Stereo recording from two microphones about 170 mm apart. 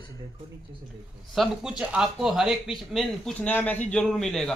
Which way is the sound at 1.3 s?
5° right (ahead or behind).